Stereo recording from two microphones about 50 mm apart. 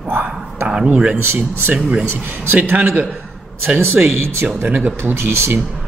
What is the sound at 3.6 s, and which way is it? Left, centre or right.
Speech, right.